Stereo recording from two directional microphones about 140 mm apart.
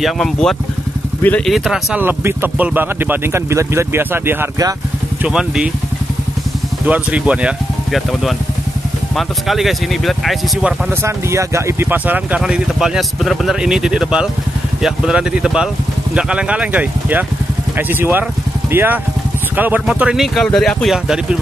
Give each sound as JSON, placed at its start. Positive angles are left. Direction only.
{"t": 0.0, "sound": "speech", "side_deg": 5}
{"t": 1.5, "sound": "speech", "side_deg": 0}
{"t": 2.0, "sound": "speech", "side_deg": -15}
{"t": 5.2, "sound": "speech", "side_deg": -5}
{"t": 6.9, "sound": "speech", "side_deg": -10}
{"t": 11.0, "sound": "speech", "side_deg": -20}